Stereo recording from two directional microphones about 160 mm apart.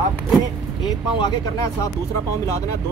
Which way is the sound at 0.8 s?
25° left (ahead or behind).